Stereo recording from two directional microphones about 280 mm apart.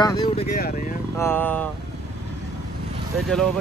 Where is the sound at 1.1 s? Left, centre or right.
Centre.